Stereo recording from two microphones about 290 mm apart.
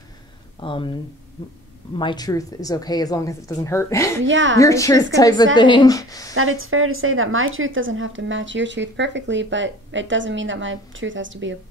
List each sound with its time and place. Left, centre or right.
0.6 s a woman's voice: centre
4.2 s a woman's voice: right
4.6 s a woman's voice: centre
6.3 s a woman's voice: right